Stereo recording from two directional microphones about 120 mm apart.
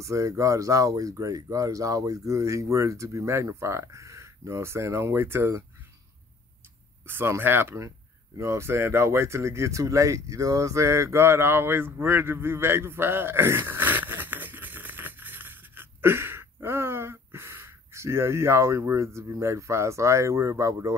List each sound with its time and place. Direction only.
0.0 s speech: 25° right (ahead or behind)
7.1 s speech: 20° right (ahead or behind)